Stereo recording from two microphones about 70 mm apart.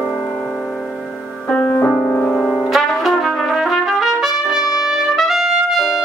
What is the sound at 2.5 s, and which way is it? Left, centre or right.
Trumpet, centre.